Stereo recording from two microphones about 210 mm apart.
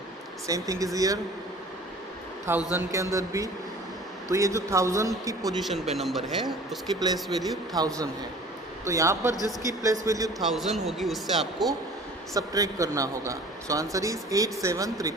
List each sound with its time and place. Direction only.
0.5 s a man's voice: 15° right (ahead or behind)
2.5 s a man's voice: 10° right (ahead or behind)
5.6 s speech: centre (ahead or behind)
7.7 s a man's voice: 15° right (ahead or behind)
9.3 s speech: 15° left (ahead or behind)
9.8 s a man's voice: 15° right (ahead or behind)
10.4 s speech: centre (ahead or behind)
12.4 s a man's voice: 15° right (ahead or behind)